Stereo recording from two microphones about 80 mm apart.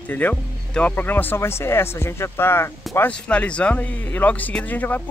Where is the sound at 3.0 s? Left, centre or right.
Centre.